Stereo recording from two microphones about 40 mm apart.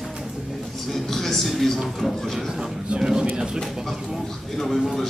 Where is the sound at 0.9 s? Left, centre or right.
Centre.